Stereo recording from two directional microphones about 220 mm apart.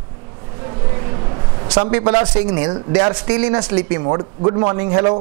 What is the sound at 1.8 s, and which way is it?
A man's voice, 20° right (ahead or behind).